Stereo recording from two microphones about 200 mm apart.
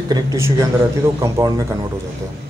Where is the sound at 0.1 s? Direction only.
15° right (ahead or behind).